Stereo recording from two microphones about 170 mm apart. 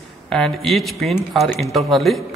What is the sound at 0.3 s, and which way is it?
A man's voice, centre (ahead or behind).